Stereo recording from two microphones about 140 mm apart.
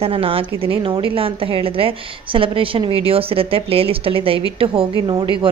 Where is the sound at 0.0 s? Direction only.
45° right (ahead or behind).